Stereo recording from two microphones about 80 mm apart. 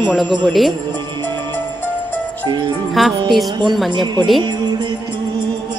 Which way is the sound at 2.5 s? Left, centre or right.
Right.